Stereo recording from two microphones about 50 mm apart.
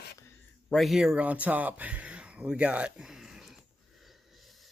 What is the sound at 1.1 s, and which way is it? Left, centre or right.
Speech, right.